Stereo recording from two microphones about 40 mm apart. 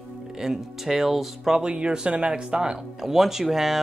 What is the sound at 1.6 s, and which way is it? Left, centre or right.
Speech, right.